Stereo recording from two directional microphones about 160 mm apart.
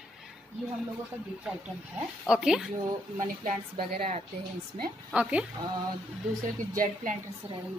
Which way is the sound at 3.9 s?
40° right (ahead or behind).